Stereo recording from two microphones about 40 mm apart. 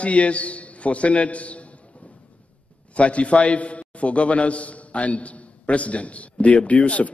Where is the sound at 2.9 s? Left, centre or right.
Left.